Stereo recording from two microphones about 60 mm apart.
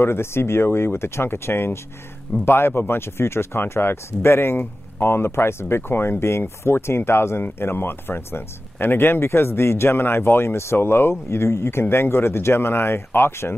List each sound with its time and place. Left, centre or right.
0.0 s speech: left